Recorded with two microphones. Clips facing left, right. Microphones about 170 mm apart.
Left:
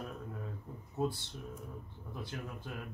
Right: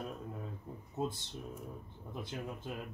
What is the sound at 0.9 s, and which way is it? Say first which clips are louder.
Speech: left 2 dB; 20° right (ahead or behind).